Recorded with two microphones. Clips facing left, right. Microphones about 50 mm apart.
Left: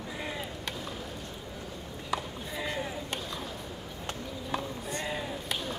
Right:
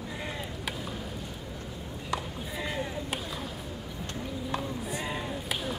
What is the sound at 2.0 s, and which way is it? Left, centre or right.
Chop, centre.